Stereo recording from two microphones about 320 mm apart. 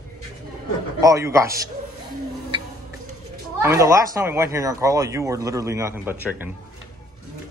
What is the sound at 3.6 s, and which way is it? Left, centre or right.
Speech, centre.